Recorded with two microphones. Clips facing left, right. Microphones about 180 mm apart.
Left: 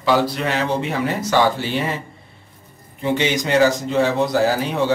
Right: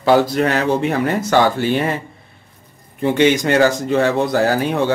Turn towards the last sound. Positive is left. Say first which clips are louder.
# right 2 dB
turn(degrees=-55)  # may be behind; listen again after turning